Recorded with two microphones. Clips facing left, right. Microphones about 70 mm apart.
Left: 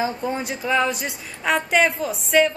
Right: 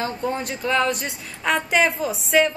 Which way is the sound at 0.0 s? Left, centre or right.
Centre.